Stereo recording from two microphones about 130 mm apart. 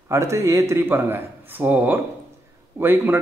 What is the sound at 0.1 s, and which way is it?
A man's voice, 20° right (ahead or behind).